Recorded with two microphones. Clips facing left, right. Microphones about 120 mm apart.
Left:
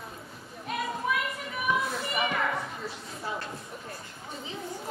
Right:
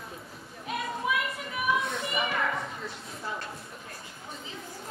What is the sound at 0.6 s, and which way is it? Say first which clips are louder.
Children playing: even; centre (ahead or behind).